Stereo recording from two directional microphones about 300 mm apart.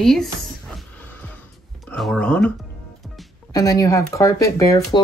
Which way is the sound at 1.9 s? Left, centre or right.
Centre.